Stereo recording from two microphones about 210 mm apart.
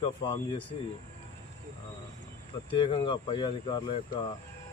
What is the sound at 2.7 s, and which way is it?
Speech, 25° left (ahead or behind).